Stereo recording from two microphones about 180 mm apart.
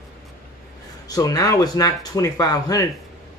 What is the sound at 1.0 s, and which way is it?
Speech, 20° left (ahead or behind).